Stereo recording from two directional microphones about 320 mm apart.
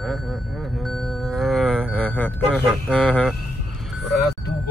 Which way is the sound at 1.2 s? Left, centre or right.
Centre.